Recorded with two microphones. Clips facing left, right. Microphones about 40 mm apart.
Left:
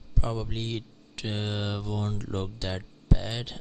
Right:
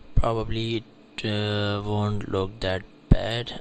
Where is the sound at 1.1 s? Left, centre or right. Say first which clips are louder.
Right 6 dB; right.